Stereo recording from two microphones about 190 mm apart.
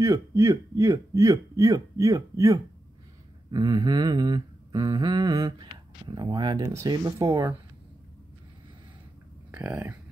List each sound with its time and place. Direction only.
0.0 s speech: 15° right (ahead or behind)
3.4 s humming: 20° right (ahead or behind)
9.5 s speech: 10° right (ahead or behind)